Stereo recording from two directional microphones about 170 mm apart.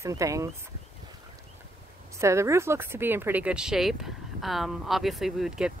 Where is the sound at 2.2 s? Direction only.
15° right (ahead or behind).